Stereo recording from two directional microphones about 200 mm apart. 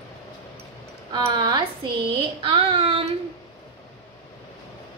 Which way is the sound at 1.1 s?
20° right (ahead or behind).